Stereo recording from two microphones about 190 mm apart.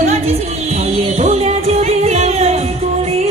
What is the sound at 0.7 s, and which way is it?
Music, 35° right (ahead or behind).